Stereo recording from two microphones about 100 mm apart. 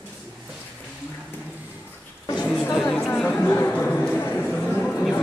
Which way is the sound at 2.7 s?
Centre (ahead or behind).